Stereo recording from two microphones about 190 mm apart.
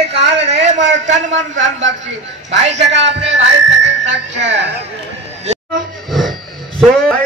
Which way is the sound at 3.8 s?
70° right (ahead or behind).